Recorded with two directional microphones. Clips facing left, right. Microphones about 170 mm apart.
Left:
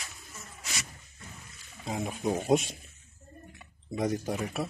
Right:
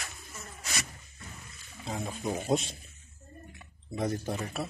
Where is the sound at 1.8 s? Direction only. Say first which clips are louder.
Left 3 dB; 15° left (ahead or behind).